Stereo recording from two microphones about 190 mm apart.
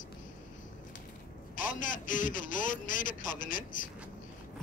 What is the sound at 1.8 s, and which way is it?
A man's voice, 45° left (ahead or behind).